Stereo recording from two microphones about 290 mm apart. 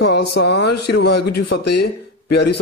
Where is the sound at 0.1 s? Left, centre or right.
Left.